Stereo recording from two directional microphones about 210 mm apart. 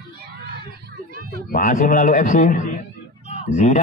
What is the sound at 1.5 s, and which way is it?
A man's voice, 40° left (ahead or behind).